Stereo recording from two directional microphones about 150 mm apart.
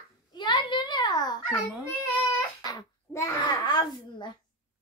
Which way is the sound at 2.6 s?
20° left (ahead or behind).